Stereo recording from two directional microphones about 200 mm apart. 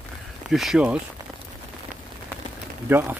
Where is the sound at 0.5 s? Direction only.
Centre (ahead or behind).